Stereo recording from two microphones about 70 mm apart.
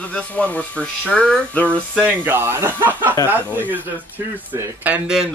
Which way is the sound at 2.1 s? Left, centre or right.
Right.